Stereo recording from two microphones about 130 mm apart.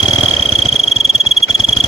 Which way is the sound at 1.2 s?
45° left (ahead or behind).